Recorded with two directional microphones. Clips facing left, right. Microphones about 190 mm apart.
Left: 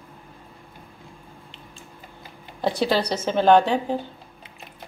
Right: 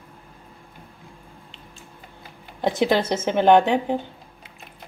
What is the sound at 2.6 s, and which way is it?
A woman's voice, 20° right (ahead or behind).